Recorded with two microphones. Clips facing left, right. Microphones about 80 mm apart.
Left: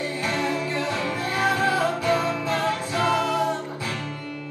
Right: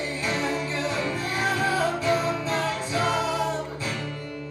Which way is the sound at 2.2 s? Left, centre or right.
Centre.